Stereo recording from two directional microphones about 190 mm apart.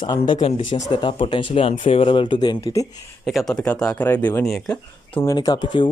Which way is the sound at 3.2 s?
Centre (ahead or behind).